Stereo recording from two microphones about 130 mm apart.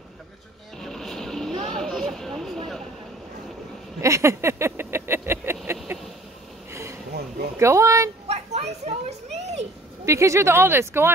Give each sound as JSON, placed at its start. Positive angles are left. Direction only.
{"t": 0.7, "sound": "vehicle", "side_deg": 5}
{"t": 4.0, "sound": "a sound", "side_deg": -20}
{"t": 7.5, "sound": "speech", "side_deg": -20}
{"t": 8.3, "sound": "children playing", "side_deg": -55}
{"t": 10.0, "sound": "speech", "side_deg": -20}